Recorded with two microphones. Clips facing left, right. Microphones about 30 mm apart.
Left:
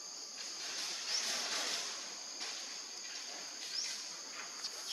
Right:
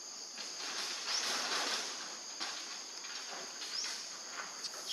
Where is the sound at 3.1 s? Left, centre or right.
Right.